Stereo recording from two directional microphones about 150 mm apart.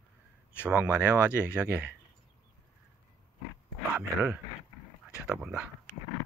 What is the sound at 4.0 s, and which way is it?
Speech, 10° right (ahead or behind).